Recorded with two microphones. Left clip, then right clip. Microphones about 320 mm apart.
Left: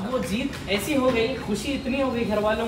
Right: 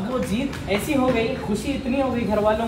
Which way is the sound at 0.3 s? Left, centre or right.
Centre.